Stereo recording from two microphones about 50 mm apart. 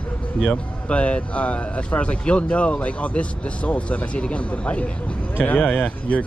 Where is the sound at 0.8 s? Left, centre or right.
Left.